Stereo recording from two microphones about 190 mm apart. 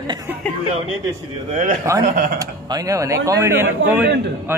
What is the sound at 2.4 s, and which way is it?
Speech, 20° right (ahead or behind).